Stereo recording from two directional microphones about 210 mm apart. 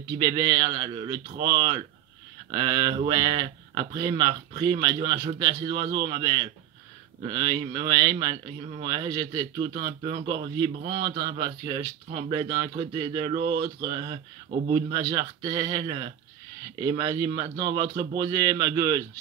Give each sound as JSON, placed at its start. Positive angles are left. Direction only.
{"t": 0.2, "sound": "speech", "side_deg": -20}